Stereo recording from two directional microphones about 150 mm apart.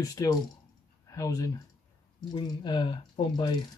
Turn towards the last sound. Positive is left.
turn(degrees=30)  # may be behind; listen again after turning